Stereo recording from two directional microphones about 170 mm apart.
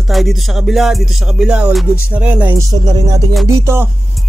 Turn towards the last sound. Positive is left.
turn(degrees=-15)  # may be behind; listen again after turning